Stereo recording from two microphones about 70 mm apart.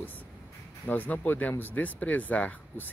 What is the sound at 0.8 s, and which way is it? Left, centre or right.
Speech, left.